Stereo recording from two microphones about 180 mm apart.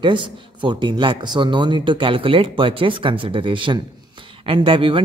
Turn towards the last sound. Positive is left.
turn(degrees=-30)  # may be behind; listen again after turning